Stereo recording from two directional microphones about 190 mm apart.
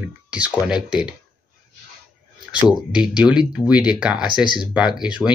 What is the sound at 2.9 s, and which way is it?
Speech, 5° right (ahead or behind).